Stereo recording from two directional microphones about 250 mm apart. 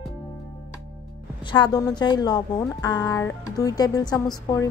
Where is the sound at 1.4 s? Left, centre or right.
Centre.